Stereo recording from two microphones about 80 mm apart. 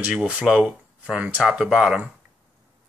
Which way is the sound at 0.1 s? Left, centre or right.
Centre.